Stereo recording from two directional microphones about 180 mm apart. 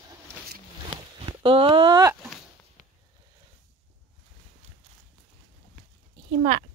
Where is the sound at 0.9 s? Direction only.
30° right (ahead or behind).